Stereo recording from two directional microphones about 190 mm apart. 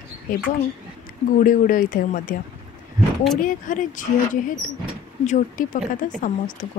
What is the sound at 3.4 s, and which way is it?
Speech, 45° left (ahead or behind).